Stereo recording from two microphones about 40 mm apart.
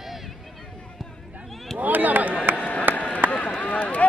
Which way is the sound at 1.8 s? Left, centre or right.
Right.